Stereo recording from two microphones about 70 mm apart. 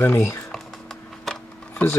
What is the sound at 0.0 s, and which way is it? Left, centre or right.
Speech, left.